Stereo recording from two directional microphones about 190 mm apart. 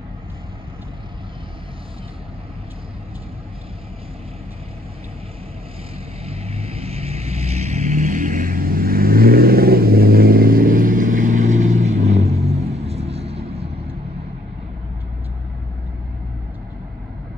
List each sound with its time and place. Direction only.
6.2 s vehicle: 30° right (ahead or behind)